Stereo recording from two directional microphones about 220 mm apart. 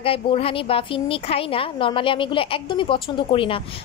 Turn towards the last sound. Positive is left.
turn(degrees=25)  # may be behind; listen again after turning